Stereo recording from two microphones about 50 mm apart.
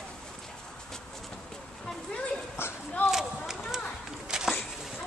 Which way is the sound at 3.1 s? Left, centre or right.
Centre.